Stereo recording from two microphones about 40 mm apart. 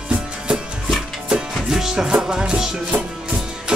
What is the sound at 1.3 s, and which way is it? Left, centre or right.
Music, centre.